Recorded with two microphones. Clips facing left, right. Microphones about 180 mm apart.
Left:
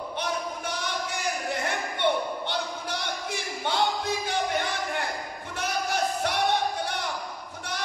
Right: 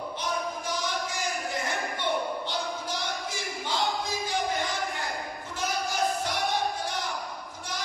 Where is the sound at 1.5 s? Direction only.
60° left (ahead or behind).